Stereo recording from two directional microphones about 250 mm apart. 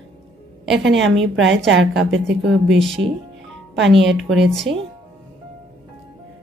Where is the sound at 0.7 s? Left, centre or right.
Right.